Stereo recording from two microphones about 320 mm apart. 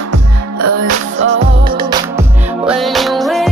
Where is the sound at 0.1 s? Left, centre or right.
Right.